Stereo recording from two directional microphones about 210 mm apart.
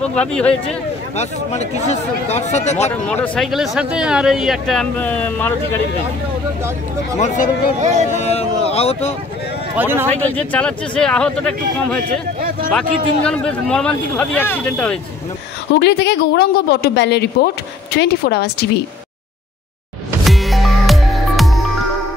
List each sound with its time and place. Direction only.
0.0 s speech: 5° left (ahead or behind)
1.1 s speech: 30° left (ahead or behind)
2.9 s speech: 5° left (ahead or behind)
7.8 s speech: 35° right (ahead or behind)
8.2 s speech: 30° left (ahead or behind)
9.8 s speech: 10° right (ahead or behind)
10.2 s speech: 5° left (ahead or behind)
12.0 s a sound: 45° right (ahead or behind)
12.7 s speech: 5° left (ahead or behind)
15.7 s a woman's voice: 55° left (ahead or behind)
20.2 s music: centre (ahead or behind)